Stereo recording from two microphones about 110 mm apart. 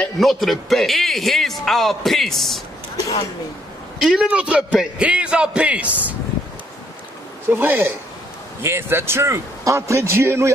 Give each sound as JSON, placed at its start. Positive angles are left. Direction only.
{"t": 0.0, "sound": "speech", "side_deg": 0}
{"t": 4.0, "sound": "a man's voice", "side_deg": -5}
{"t": 7.4, "sound": "a man's voice", "side_deg": -20}